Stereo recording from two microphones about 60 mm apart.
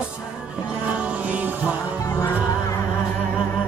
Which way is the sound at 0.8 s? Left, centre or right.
Right.